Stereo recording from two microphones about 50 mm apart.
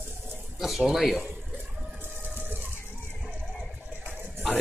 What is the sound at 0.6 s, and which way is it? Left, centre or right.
Speech, centre.